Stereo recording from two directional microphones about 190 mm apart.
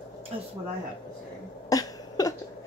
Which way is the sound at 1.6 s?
20° left (ahead or behind).